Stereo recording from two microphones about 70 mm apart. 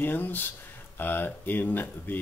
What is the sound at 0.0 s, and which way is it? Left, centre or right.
Speech, left.